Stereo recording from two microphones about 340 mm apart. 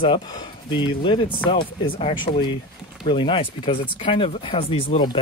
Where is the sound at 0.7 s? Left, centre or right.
Centre.